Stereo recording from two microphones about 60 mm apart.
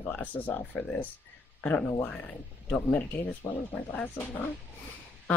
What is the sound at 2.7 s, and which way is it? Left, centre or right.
Speech, left.